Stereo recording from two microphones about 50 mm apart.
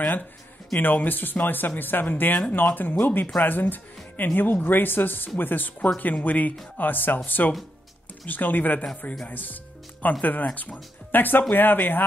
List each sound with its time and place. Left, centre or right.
0.7 s speech: left